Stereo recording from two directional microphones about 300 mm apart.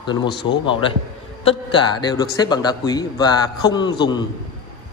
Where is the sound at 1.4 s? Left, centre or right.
Centre.